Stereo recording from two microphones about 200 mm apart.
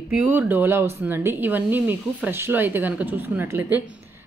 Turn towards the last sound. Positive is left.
turn(degrees=-10)  # may be behind; listen again after turning